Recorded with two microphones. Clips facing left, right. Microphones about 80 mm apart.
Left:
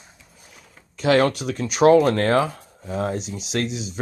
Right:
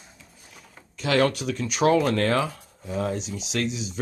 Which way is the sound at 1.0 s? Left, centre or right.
Left.